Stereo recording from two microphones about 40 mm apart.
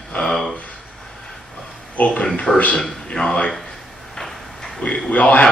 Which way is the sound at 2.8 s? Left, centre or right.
Centre.